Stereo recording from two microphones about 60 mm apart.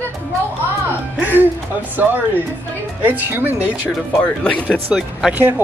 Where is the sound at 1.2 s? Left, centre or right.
Right.